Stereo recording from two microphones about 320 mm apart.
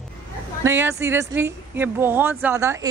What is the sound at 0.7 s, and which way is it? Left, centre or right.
Speech, centre.